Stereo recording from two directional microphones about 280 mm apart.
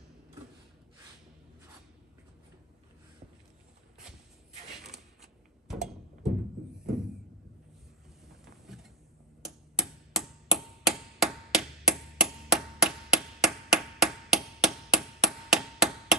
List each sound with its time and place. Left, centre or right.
4.9 s a sound: centre
8.3 s vehicle: centre
9.4 s chop: centre